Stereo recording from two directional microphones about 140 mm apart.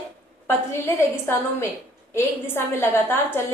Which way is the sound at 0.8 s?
20° left (ahead or behind).